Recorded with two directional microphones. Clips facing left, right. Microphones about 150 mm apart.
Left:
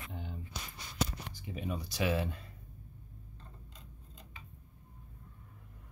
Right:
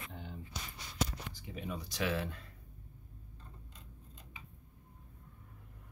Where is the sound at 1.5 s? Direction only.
10° left (ahead or behind).